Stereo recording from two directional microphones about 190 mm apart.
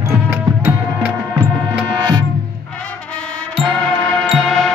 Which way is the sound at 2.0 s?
25° right (ahead or behind).